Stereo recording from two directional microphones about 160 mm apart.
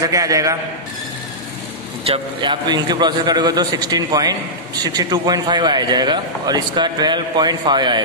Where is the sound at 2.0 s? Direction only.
35° right (ahead or behind).